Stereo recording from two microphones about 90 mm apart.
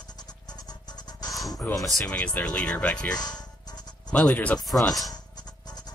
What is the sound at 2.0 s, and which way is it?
Speech, 15° left (ahead or behind).